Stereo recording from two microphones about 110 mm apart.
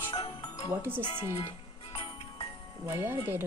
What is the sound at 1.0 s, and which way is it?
Speech, 45° left (ahead or behind).